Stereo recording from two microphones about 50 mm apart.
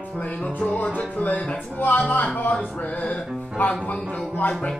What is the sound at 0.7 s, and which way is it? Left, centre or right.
Music, left.